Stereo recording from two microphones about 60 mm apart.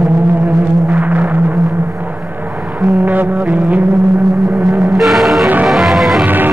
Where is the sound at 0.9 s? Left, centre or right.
Right.